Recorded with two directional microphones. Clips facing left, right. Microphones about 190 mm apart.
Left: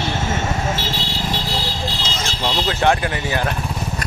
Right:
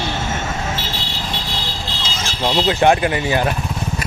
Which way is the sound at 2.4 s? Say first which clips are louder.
Right 4 dB; 15° right (ahead or behind).